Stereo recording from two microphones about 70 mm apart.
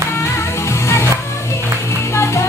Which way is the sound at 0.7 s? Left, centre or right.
Left.